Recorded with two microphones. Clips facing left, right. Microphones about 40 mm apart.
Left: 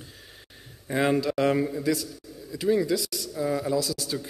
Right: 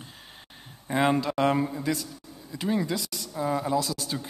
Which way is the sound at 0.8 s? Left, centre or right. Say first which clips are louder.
Even; centre.